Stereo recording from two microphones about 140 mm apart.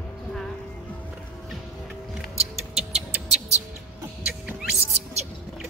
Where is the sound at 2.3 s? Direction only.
50° right (ahead or behind).